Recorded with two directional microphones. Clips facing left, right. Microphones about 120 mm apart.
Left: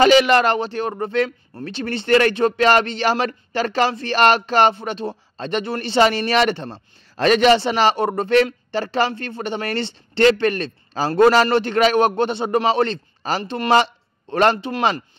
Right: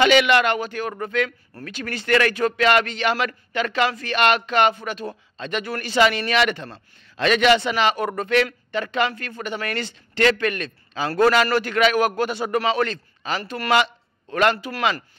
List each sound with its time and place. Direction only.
0.0 s speech: 35° left (ahead or behind)